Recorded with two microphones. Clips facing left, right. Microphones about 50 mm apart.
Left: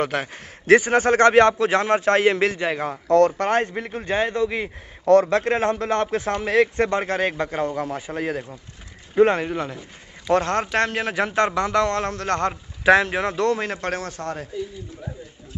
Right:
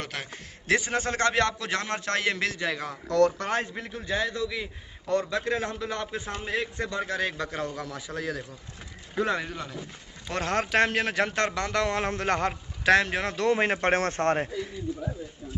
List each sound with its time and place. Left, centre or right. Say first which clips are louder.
0.0 s a man's voice: left 11 dB; left
1.4 s a man's voice: left 10 dB; left
1.7 s a man's voice: left 10 dB; centre; by 4.6 s left
5.0 s a man's voice: left 11 dB; left
5.4 s a man's voice: left 8 dB; left
10.3 s speech: left 5 dB; centre
11.9 s a man's voice: left 3 dB; centre
12.8 s speech: left 5 dB; centre
13.5 s speech: even; right
13.9 s speech: right 4 dB; right